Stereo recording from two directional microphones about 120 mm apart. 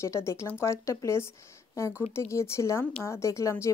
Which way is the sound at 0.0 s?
25° left (ahead or behind).